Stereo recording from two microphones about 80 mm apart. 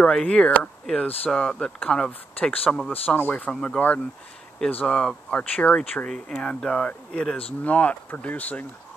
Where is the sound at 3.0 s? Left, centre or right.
Left.